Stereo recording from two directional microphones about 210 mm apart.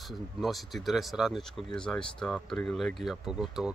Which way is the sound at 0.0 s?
Centre (ahead or behind).